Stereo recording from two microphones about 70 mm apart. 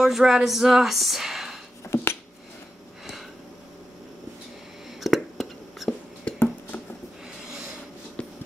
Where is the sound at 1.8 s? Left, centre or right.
Left.